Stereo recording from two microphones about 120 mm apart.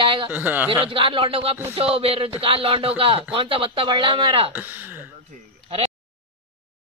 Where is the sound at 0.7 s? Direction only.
45° right (ahead or behind).